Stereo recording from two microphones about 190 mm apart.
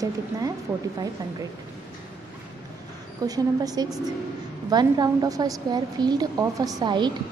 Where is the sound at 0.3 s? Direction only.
20° right (ahead or behind).